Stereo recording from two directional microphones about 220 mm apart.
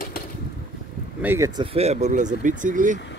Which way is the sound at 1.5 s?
30° right (ahead or behind).